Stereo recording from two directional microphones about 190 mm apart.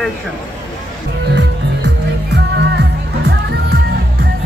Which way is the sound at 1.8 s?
65° right (ahead or behind).